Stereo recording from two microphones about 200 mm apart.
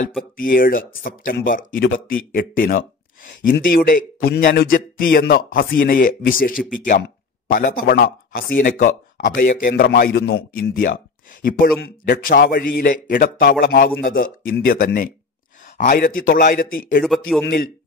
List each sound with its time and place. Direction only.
0.4 s a man's voice: 45° left (ahead or behind)
17.0 s speech: centre (ahead or behind)